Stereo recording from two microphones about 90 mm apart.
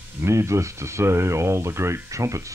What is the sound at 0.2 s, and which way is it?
Speech, 30° right (ahead or behind).